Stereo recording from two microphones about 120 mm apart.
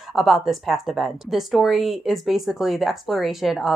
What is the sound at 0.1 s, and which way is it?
A woman's voice, centre (ahead or behind).